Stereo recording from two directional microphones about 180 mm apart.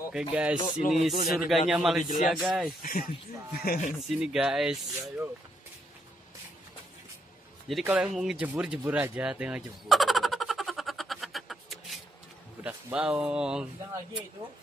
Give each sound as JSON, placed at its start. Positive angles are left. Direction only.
{"t": 0.1, "sound": "speech", "side_deg": -5}
{"t": 2.0, "sound": "music", "side_deg": 45}
{"t": 2.4, "sound": "speech", "side_deg": -5}
{"t": 2.8, "sound": "music", "side_deg": 50}
{"t": 4.1, "sound": "speech", "side_deg": -5}
{"t": 7.8, "sound": "speech", "side_deg": -10}
{"t": 8.2, "sound": "fowl", "side_deg": -5}
{"t": 12.6, "sound": "speech", "side_deg": -5}